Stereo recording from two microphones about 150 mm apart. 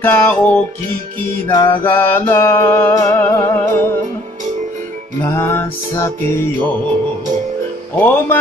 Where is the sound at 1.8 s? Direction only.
15° left (ahead or behind).